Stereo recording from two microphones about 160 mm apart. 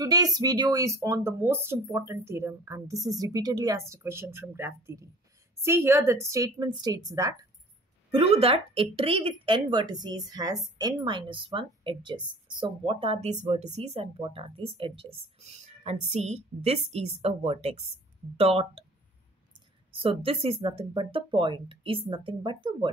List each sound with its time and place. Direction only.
0.0 s a woman's voice: 25° right (ahead or behind)
8.1 s a woman's voice: 40° right (ahead or behind)
19.9 s a woman's voice: 35° right (ahead or behind)